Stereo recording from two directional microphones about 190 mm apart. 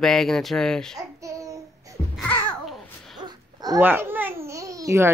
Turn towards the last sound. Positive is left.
turn(degrees=-15)  # may be behind; listen again after turning